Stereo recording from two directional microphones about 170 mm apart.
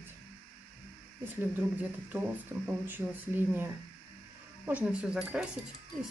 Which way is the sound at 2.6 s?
10° right (ahead or behind).